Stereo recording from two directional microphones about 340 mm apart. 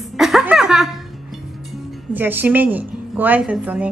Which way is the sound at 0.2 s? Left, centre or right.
Centre.